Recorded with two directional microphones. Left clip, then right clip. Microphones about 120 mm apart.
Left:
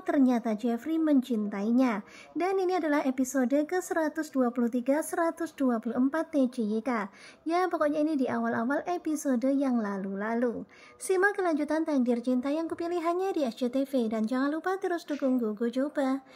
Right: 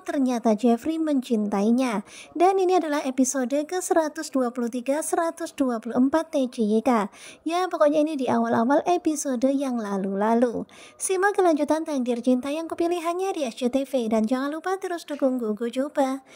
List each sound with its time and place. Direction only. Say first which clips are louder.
0.0 s speech: right 3 dB; 45° right (ahead or behind)